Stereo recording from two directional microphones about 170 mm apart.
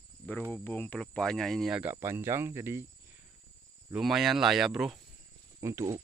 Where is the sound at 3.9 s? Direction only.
Centre (ahead or behind).